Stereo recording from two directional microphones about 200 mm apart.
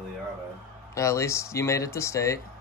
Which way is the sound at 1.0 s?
15° left (ahead or behind).